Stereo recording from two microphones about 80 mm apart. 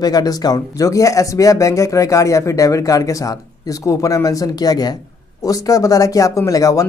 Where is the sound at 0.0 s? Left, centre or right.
Left.